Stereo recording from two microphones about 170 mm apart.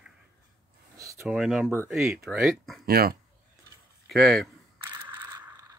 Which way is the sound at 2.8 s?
65° right (ahead or behind).